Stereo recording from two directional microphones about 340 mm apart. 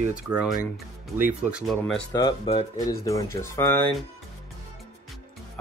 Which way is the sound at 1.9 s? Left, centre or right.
Centre.